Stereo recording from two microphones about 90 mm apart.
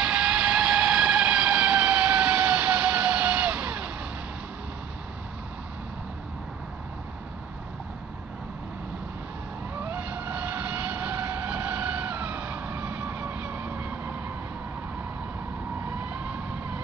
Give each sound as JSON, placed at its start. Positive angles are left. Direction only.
{"t": 0.0, "sound": "vehicle", "side_deg": -5}
{"t": 9.8, "sound": "vehicle", "side_deg": -20}
{"t": 16.1, "sound": "vehicle", "side_deg": -15}